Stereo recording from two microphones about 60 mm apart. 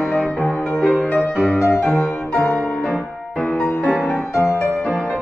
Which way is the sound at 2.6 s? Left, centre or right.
Centre.